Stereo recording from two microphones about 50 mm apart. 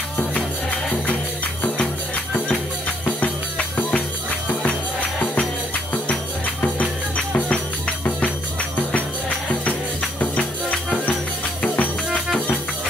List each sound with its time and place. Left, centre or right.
0.3 s music: left
3.2 s music: left
5.2 s music: left
7.3 s music: left
10.3 s music: left